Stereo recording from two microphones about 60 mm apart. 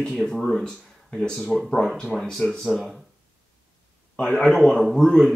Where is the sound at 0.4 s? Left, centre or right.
Centre.